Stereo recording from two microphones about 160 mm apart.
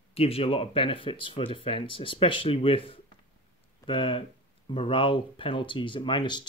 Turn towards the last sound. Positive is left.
turn(degrees=30)  # may be behind; listen again after turning